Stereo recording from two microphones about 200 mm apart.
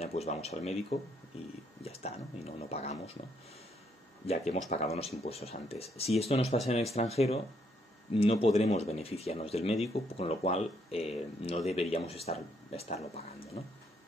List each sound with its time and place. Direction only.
0.0 s speech: 30° left (ahead or behind)
4.3 s speech: 35° left (ahead or behind)